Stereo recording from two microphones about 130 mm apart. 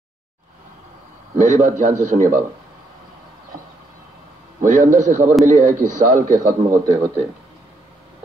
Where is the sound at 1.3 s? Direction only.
65° right (ahead or behind).